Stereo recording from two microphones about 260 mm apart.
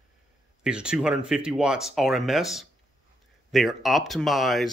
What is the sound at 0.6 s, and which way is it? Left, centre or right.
Speech, centre.